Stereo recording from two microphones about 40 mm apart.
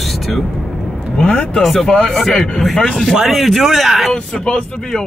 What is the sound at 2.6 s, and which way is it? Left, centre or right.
Speech, centre.